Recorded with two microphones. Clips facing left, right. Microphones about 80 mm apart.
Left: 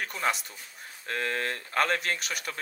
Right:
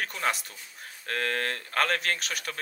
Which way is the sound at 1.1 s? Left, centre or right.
Centre.